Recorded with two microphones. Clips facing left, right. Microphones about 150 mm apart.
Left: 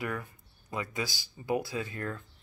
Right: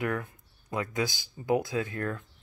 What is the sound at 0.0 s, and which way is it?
Speech, centre (ahead or behind).